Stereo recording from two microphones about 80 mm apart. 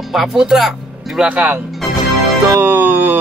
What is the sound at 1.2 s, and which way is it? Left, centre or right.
Speech, centre.